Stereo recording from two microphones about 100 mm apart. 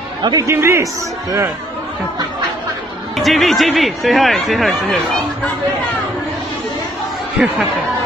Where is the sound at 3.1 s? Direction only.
Centre (ahead or behind).